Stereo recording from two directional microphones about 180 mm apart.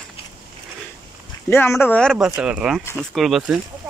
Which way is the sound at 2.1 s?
5° right (ahead or behind).